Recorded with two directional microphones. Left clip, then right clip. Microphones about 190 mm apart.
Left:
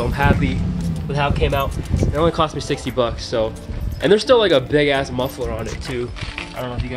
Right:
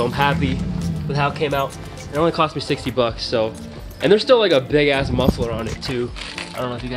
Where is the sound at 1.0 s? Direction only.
10° right (ahead or behind).